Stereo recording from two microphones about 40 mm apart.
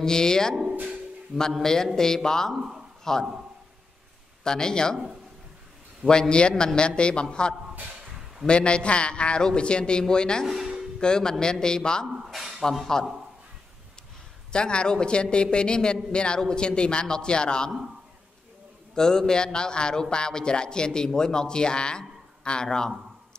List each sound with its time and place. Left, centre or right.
0.0 s speech: centre
1.6 s speech: centre
3.0 s a sound: centre
4.5 s speech: centre
6.0 s a man's voice: left
10.4 s speech: centre
11.0 s a man's voice: centre
14.5 s a man's voice: left
18.9 s a man's voice: centre